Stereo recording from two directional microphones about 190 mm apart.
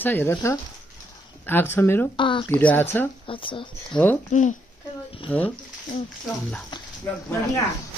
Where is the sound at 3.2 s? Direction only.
25° left (ahead or behind).